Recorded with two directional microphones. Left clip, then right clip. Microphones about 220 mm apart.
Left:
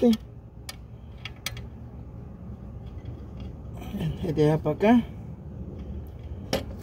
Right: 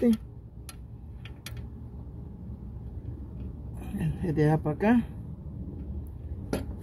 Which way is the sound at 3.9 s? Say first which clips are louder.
Left 2 dB; 30° right (ahead or behind).